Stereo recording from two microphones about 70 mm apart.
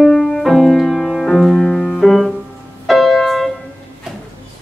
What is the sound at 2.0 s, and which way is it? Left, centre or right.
Music, centre.